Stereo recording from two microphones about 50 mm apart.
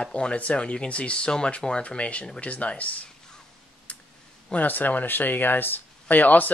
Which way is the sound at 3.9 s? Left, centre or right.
Left.